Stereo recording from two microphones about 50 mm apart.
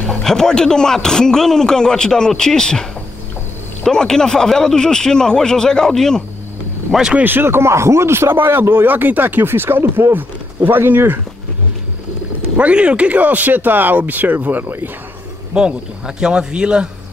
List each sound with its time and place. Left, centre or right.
0.2 s a man's voice: centre
7.2 s speech: right
12.5 s speech: right
15.5 s a man's voice: centre